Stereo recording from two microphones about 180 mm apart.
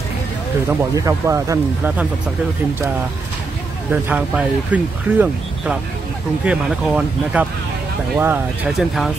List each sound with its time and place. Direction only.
0.7 s speech: 15° right (ahead or behind)
3.9 s speech: 10° right (ahead or behind)
8.6 s speech: centre (ahead or behind)